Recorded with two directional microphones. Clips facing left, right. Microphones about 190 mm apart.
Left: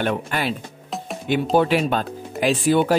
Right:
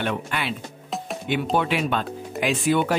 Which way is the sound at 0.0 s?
40° left (ahead or behind).